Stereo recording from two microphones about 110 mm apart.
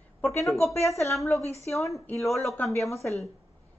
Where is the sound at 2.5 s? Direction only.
20° left (ahead or behind).